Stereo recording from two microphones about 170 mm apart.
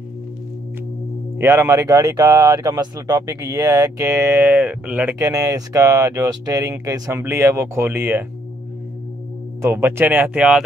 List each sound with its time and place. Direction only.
1.4 s speech: 15° right (ahead or behind)
5.2 s speech: 20° right (ahead or behind)
9.6 s speech: 15° right (ahead or behind)